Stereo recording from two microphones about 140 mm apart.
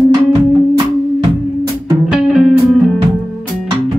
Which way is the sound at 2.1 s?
5° right (ahead or behind).